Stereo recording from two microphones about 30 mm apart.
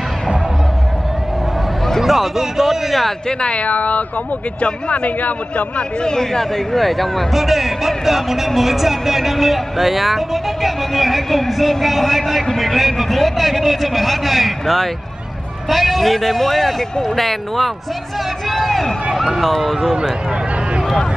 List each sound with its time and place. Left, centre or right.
2.0 s speech: centre
3.4 s speech: left
3.7 s speech: left
4.6 s speech: left
5.0 s a man's voice: left
6.0 s speech: centre
7.3 s a man's voice: centre